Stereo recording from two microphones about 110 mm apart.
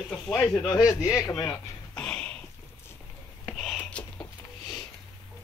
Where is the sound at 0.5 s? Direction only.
35° left (ahead or behind).